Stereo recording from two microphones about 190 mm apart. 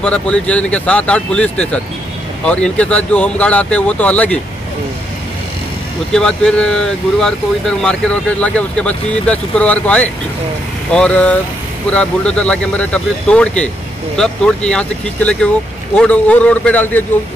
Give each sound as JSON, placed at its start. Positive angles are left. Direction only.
{"t": 0.0, "sound": "speech", "side_deg": 5}
{"t": 6.1, "sound": "speech", "side_deg": 5}